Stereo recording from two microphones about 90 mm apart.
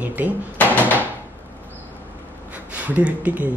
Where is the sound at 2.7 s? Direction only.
15° right (ahead or behind).